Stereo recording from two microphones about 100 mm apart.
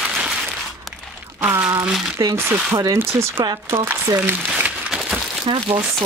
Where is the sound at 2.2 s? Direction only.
35° right (ahead or behind).